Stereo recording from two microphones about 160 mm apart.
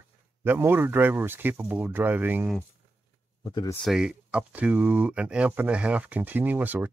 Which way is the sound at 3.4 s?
25° left (ahead or behind).